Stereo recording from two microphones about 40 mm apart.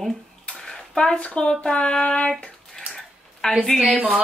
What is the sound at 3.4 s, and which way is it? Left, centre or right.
Speech, left.